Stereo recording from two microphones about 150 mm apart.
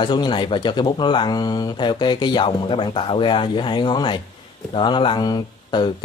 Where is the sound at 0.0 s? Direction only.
30° left (ahead or behind).